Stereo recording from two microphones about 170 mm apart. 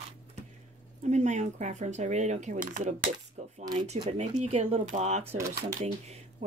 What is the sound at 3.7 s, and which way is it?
Speech, 40° right (ahead or behind).